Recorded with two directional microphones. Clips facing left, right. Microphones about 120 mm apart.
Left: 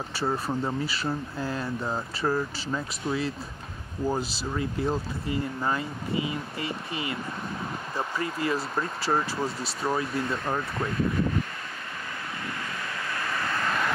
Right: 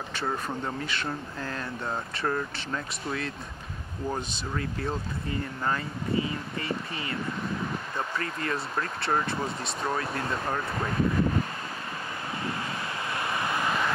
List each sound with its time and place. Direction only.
0.2 s speech: 5° left (ahead or behind)
13.1 s vehicle: 20° right (ahead or behind)